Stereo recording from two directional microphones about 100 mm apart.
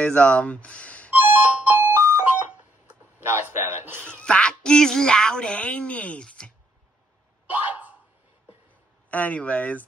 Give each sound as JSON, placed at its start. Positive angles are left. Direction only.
{"t": 0.0, "sound": "speech", "side_deg": 10}
{"t": 1.1, "sound": "music", "side_deg": -20}
{"t": 3.4, "sound": "chuckle", "side_deg": -20}
{"t": 4.0, "sound": "speech", "side_deg": 10}
{"t": 7.5, "sound": "a sound", "side_deg": -15}
{"t": 9.1, "sound": "speech", "side_deg": 15}